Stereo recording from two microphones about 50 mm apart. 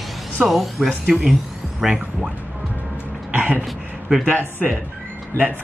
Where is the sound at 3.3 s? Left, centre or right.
Right.